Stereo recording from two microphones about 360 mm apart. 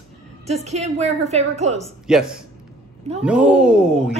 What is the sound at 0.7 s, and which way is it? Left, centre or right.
A woman's voice, centre.